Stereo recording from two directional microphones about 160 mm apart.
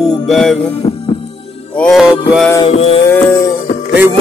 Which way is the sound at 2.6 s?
40° left (ahead or behind).